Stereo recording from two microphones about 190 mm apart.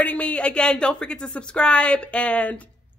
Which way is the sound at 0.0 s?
5° left (ahead or behind).